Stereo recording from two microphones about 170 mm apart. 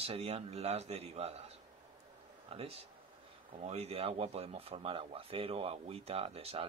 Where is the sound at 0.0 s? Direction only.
35° right (ahead or behind).